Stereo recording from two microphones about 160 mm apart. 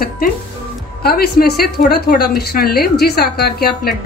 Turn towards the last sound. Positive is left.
turn(degrees=70)  # may be behind; listen again after turning